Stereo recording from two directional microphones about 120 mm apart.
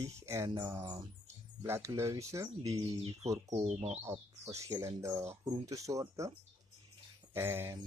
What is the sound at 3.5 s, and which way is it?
Speech, 65° right (ahead or behind).